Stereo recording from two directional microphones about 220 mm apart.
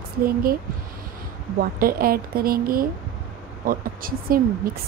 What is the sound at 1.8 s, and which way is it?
A woman's voice, 40° right (ahead or behind).